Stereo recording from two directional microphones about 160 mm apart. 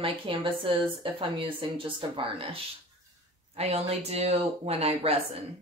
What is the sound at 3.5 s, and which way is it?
A woman's voice, 40° right (ahead or behind).